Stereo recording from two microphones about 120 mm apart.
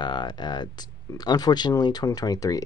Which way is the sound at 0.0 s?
40° left (ahead or behind).